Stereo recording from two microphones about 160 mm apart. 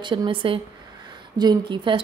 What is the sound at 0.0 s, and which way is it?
A woman's voice, 30° right (ahead or behind).